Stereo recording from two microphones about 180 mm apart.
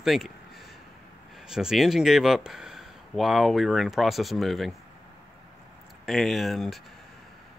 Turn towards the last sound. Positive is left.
turn(degrees=0)  # may be behind; listen again after turning